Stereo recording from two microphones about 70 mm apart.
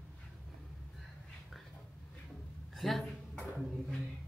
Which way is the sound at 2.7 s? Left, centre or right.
Centre.